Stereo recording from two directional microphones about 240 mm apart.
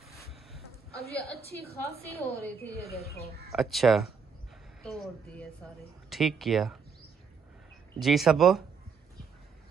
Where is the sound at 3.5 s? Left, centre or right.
Centre.